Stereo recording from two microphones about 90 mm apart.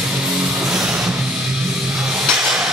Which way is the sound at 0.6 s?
5° right (ahead or behind).